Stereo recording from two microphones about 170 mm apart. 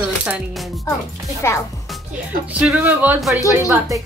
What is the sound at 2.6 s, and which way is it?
Speech, 10° right (ahead or behind).